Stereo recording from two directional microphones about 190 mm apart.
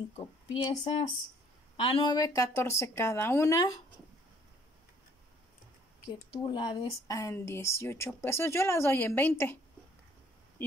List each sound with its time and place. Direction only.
0.1 s speech: 30° left (ahead or behind)
6.4 s speech: 25° left (ahead or behind)